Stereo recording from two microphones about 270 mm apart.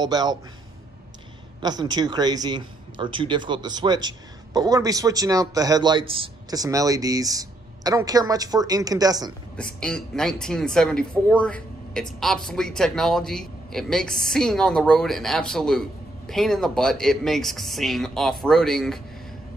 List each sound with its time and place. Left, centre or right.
0.0 s a man's voice: centre
1.6 s a man's voice: centre
9.8 s speech: centre